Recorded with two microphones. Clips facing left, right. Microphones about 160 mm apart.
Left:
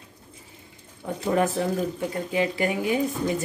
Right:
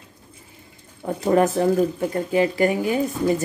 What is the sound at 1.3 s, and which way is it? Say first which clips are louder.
Speech: right 6 dB; 45° right (ahead or behind).